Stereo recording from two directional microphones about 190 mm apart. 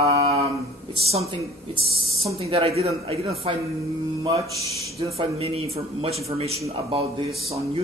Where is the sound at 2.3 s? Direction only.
30° right (ahead or behind).